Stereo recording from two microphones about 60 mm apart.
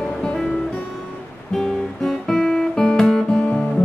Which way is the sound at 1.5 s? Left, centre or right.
Centre.